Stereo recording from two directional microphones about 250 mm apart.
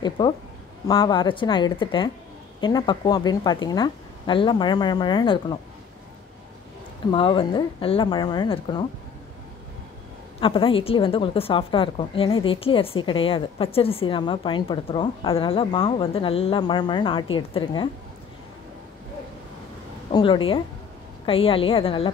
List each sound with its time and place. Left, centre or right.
0.2 s a woman's voice: centre
7.1 s a woman's voice: centre
10.4 s a woman's voice: left
20.1 s a woman's voice: centre